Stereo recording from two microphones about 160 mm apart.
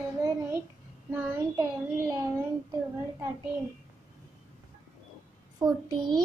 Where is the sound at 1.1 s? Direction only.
20° right (ahead or behind).